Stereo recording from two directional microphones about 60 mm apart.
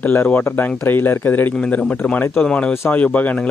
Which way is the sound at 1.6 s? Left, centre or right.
Left.